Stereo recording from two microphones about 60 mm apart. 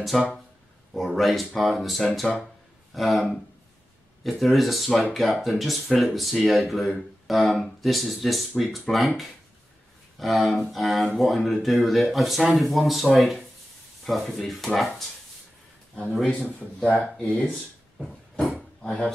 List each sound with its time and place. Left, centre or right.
0.0 s speech: centre
14.8 s a sound: centre
16.5 s speech: left
18.8 s speech: centre